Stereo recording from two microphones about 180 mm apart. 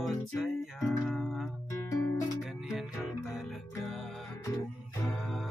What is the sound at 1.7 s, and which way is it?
Music, 15° left (ahead or behind).